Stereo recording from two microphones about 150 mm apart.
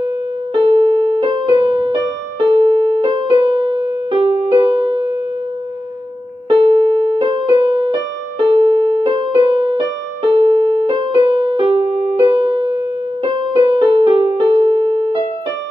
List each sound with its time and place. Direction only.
0.6 s music: 35° right (ahead or behind)
6.5 s keyboard: 35° right (ahead or behind)
8.4 s music: 35° right (ahead or behind)